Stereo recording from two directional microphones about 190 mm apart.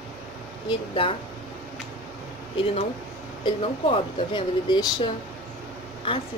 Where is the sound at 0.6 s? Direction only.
25° left (ahead or behind).